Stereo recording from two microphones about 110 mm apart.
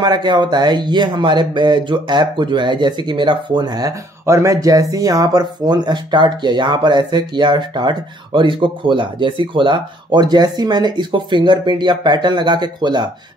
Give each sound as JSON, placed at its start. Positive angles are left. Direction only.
{"t": 0.0, "sound": "speech", "side_deg": -40}